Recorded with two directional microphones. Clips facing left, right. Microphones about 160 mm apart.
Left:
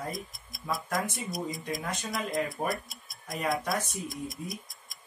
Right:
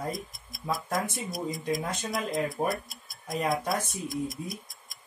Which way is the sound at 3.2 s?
Centre (ahead or behind).